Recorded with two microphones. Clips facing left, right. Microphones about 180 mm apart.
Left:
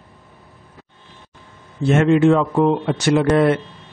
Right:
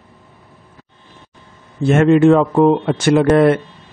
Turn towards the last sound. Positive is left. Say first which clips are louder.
# right 4 dB
turn(degrees=-55)  # may be behind; listen again after turning